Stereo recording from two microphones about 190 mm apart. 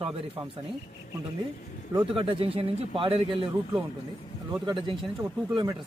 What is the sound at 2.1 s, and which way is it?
A man's voice, 30° right (ahead or behind).